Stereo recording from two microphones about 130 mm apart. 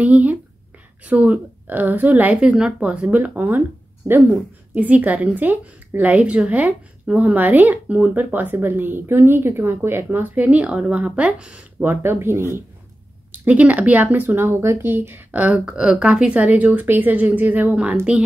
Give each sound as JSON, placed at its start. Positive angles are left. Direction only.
{"t": 0.0, "sound": "a woman's voice", "side_deg": -10}